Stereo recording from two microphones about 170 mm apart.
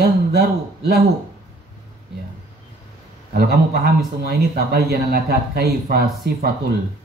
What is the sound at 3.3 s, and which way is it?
Speech, 65° right (ahead or behind).